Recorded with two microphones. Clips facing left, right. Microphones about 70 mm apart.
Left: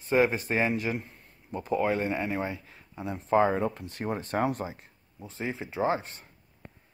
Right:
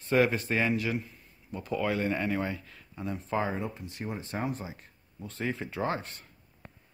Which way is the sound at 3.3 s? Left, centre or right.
Left.